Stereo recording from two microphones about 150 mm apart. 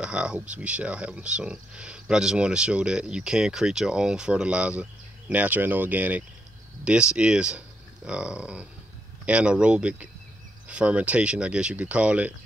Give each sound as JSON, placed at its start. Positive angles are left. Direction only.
{"t": 0.0, "sound": "speech", "side_deg": -5}